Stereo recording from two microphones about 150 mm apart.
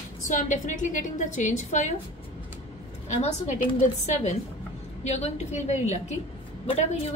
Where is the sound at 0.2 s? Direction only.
60° left (ahead or behind).